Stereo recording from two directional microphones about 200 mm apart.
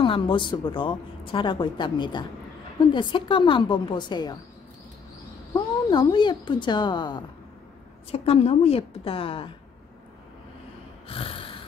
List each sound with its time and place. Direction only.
0.0 s speech: 25° left (ahead or behind)
5.9 s speech: 25° left (ahead or behind)
11.1 s snort: 25° left (ahead or behind)